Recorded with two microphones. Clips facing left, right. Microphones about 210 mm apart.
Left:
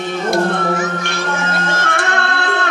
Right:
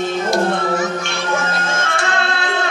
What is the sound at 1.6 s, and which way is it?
Music, 60° left (ahead or behind).